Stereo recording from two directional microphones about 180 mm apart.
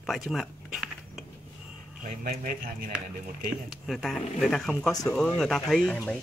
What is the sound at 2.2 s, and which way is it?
Speech, 50° right (ahead or behind).